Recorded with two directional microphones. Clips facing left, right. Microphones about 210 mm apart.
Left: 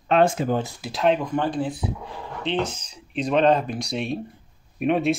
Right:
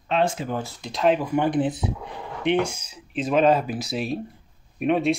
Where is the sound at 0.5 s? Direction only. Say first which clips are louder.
Left 4 dB; 15° left (ahead or behind).